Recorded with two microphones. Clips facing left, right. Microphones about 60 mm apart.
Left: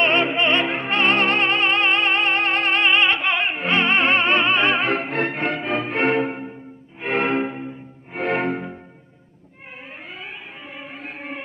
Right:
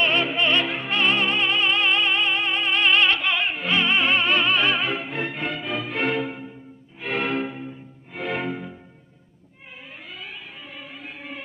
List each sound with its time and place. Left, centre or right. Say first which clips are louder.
0.0 s music: left 3 dB; left
0.8 s music: left 5 dB; left
2.8 s music: even; left
3.7 s music: left 3 dB; left
4.8 s music: left 5 dB; left
8.2 s music: left 5 dB; left
10.1 s music: even; left